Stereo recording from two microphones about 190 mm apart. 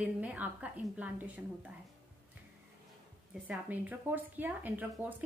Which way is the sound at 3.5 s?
10° right (ahead or behind).